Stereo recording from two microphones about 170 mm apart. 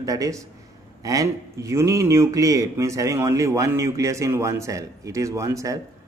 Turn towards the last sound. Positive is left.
turn(degrees=-20)  # may be behind; listen again after turning